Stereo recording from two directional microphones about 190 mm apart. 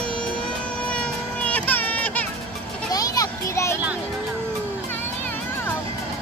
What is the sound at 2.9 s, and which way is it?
Children playing, 20° left (ahead or behind).